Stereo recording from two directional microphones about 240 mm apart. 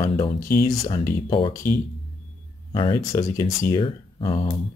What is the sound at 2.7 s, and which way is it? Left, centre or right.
Speech, centre.